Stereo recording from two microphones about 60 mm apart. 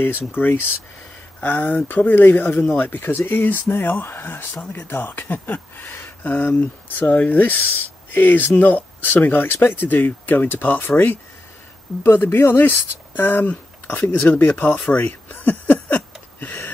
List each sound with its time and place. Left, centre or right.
0.3 s speech: left